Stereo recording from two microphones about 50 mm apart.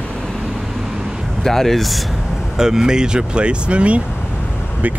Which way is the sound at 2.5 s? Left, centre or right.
Centre.